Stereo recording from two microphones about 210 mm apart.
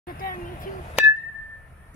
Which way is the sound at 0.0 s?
40° left (ahead or behind).